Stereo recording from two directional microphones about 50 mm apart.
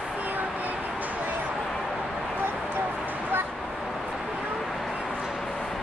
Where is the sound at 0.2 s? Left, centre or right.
Right.